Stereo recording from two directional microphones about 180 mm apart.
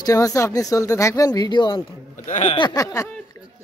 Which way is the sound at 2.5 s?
20° left (ahead or behind).